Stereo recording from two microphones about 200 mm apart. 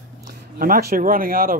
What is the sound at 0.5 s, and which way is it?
Speech, 45° right (ahead or behind).